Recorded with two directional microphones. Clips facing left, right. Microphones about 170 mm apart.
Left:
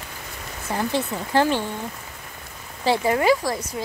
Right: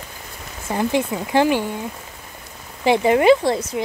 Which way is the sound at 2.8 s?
20° right (ahead or behind).